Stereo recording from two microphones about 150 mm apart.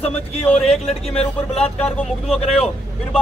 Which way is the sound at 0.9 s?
40° left (ahead or behind).